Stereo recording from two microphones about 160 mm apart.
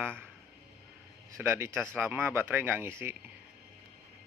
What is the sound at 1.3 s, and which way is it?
Speech, 15° right (ahead or behind).